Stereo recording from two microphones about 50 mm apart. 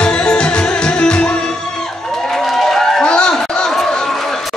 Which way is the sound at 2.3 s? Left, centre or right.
Centre.